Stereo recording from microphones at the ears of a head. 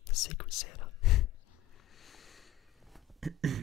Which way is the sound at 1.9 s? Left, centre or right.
Left.